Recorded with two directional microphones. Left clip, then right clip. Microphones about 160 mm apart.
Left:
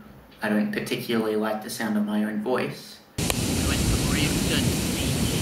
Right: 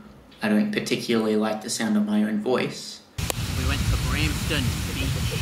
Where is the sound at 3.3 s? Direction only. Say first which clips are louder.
Left 2 dB; 80° left.